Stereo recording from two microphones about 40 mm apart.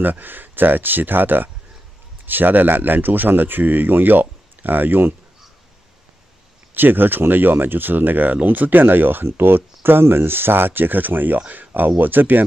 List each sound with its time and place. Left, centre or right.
0.0 s speech: right
6.7 s speech: right